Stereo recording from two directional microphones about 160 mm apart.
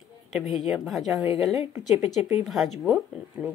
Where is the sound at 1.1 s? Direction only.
20° right (ahead or behind).